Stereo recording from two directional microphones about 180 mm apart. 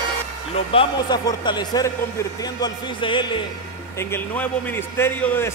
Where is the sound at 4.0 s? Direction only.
10° left (ahead or behind).